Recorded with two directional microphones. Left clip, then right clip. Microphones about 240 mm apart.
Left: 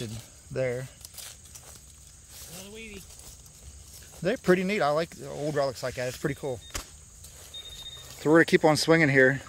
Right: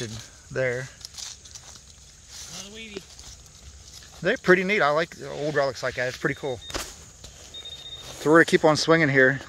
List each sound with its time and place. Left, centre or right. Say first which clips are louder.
0.0 s speech: right 4 dB; centre
1.1 s a sound: right 7 dB; left
2.6 s mechanisms: right 1 dB; left
4.2 s speech: right 5 dB; centre
8.2 s speech: right 3 dB; centre